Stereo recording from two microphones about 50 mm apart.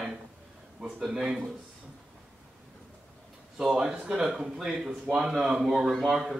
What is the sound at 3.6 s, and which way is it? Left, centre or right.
A man's voice, centre.